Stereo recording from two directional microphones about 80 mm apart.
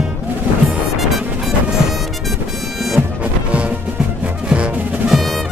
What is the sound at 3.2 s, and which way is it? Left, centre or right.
Music, centre.